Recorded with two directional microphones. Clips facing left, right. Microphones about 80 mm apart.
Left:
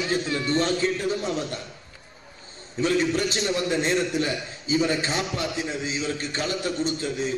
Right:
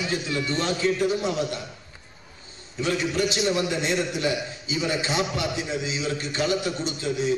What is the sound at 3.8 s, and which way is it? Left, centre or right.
A man's voice, left.